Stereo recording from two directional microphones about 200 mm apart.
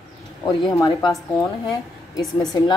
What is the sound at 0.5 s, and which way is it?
Speech, 20° left (ahead or behind).